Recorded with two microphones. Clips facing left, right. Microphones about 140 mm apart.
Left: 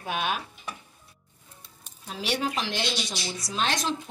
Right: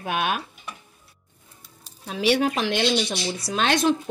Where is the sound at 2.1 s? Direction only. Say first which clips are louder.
Right 8 dB; 70° right (ahead or behind).